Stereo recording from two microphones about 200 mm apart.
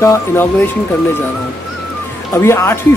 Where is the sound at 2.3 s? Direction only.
15° left (ahead or behind).